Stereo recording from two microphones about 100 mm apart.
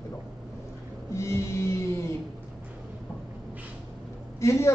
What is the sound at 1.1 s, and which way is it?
Speech, 30° left (ahead or behind).